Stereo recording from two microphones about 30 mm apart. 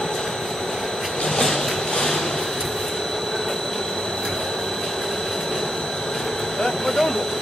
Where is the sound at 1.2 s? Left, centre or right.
Centre.